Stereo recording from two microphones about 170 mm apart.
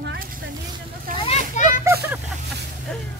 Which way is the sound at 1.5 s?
50° left (ahead or behind).